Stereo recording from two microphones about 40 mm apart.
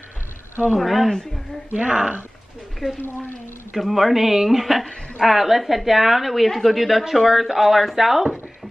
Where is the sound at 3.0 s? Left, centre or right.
Left.